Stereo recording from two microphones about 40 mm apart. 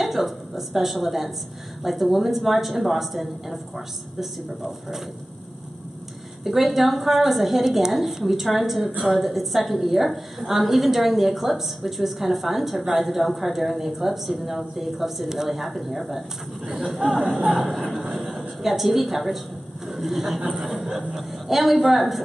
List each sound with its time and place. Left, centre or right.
0.0 s a woman's voice: centre
6.4 s a woman's voice: centre
18.0 s a sound: right
18.6 s a woman's voice: centre
20.8 s a sound: centre
21.2 s a woman's voice: centre